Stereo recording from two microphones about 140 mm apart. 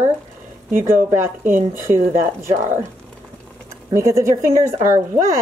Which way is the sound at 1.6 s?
20° right (ahead or behind).